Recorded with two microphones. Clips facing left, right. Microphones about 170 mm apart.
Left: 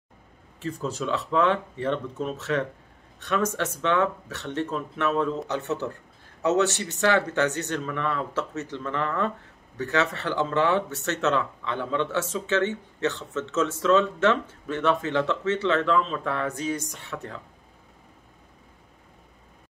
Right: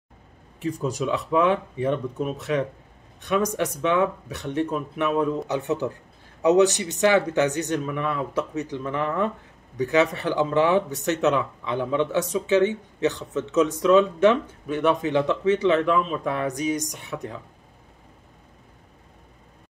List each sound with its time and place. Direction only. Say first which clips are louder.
0.6 s speech: right 4 dB; 15° right (ahead or behind)